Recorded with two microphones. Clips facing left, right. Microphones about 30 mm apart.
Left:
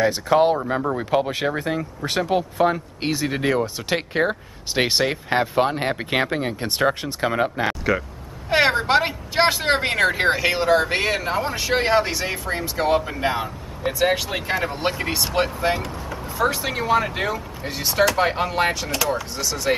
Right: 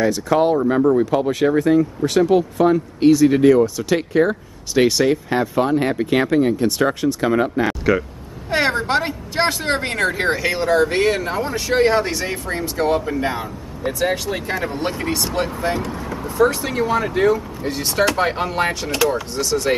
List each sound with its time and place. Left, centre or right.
0.0 s speech: left
0.6 s speech: centre
0.9 s speech: centre
3.4 s speech: left
16.1 s speech: centre